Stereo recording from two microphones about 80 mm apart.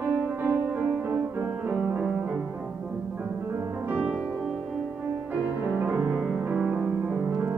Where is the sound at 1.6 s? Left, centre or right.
Centre.